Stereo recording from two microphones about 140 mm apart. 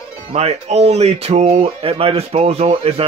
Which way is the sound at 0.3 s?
45° right (ahead or behind).